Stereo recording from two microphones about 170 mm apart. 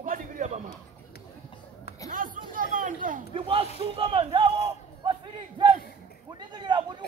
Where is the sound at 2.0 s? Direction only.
50° right (ahead or behind).